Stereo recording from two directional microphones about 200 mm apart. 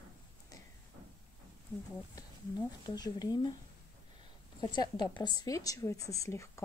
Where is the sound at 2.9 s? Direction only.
20° left (ahead or behind).